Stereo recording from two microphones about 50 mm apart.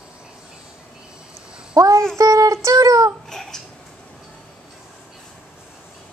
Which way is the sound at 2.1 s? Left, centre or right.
Right.